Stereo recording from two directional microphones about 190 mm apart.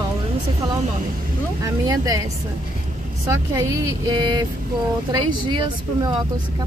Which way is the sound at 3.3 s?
20° right (ahead or behind).